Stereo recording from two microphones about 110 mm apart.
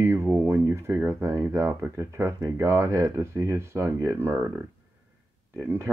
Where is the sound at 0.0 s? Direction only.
20° right (ahead or behind).